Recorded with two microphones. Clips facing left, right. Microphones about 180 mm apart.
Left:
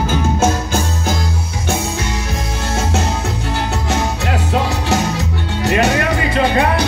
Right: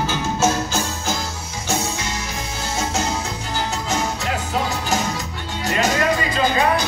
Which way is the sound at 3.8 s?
65° left (ahead or behind).